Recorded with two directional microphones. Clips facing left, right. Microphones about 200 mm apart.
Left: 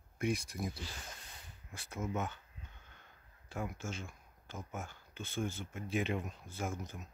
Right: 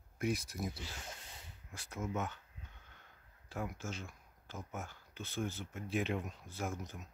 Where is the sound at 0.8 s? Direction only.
25° right (ahead or behind).